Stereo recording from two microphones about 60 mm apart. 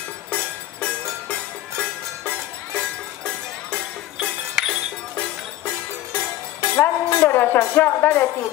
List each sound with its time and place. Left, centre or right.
0.3 s music: left
4.6 s music: centre
6.1 s music: left